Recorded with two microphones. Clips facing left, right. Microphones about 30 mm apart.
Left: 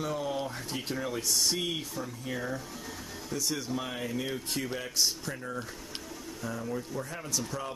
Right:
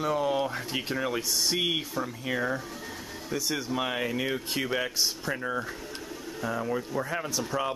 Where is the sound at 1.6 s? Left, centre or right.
Right.